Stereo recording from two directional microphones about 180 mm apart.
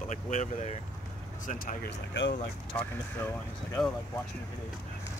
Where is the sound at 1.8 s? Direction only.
75° left (ahead or behind).